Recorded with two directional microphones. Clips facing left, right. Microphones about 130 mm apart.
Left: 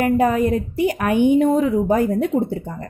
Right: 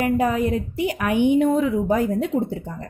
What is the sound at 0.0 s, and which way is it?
A woman's voice, 50° left (ahead or behind).